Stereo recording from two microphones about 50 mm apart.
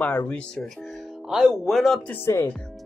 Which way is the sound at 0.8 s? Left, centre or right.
Centre.